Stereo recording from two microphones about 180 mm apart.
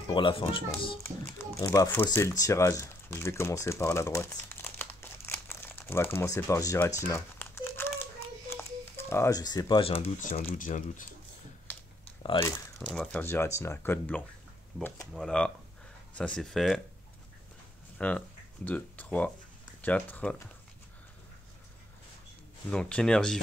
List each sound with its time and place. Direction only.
0.1 s speech: 30° left (ahead or behind)
1.0 s speech: 15° left (ahead or behind)
7.0 s crumpling: 15° left (ahead or behind); by 10.4 s 35° left (ahead or behind)
10.6 s speech: 45° left (ahead or behind)
12.9 s speech: 5° left (ahead or behind)
17.9 s speech: 5° left (ahead or behind)
22.7 s speech: 5° left (ahead or behind)